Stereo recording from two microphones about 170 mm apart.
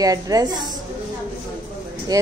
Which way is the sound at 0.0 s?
20° right (ahead or behind).